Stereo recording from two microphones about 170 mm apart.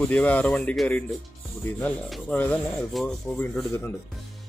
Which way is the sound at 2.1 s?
10° left (ahead or behind).